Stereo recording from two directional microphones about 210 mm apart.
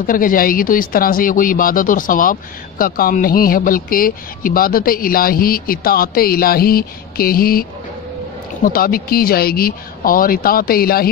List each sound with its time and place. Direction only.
0.0 s a man's voice: 40° left (ahead or behind)
8.6 s a man's voice: 45° left (ahead or behind)